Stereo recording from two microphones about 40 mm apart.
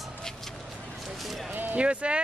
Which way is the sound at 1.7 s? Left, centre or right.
Right.